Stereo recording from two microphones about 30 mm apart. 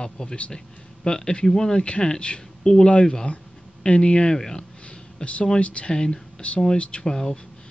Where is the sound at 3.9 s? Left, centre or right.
Left.